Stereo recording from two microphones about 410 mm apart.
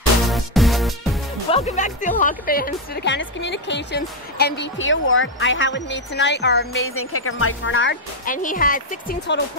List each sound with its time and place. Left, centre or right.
0.3 s music: centre
1.5 s speech: centre